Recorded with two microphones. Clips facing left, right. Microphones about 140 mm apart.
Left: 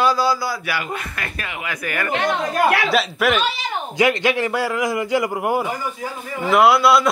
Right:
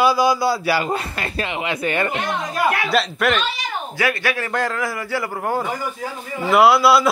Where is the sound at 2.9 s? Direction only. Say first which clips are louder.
Left 1 dB; centre (ahead or behind).